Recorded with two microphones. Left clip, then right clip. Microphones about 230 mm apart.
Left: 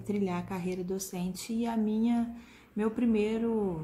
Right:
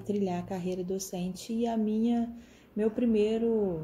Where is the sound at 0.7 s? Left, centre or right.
Left.